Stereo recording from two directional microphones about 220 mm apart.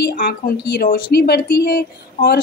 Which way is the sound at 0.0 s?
40° left (ahead or behind).